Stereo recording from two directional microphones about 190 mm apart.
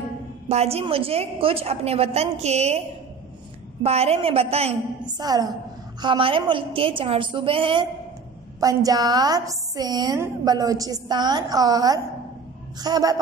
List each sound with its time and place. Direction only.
0.5 s a woman's voice: 35° right (ahead or behind)
3.8 s a woman's voice: 30° right (ahead or behind)
5.1 s a woman's voice: 20° right (ahead or behind)